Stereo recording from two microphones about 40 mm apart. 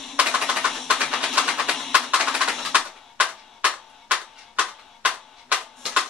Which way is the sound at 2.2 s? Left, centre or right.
Centre.